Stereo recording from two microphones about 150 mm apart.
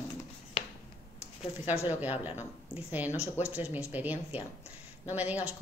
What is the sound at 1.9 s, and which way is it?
Speech, 10° right (ahead or behind).